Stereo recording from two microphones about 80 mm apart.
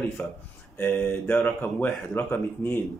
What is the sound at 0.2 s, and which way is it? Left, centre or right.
Speech, centre.